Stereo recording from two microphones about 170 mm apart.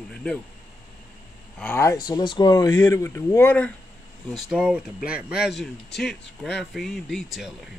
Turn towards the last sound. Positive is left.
turn(degrees=0)  # may be behind; listen again after turning